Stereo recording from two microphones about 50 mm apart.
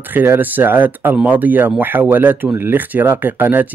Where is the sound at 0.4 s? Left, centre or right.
Right.